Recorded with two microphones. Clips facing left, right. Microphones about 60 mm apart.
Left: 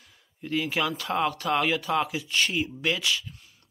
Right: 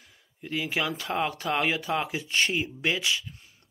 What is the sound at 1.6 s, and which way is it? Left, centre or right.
Speech, right.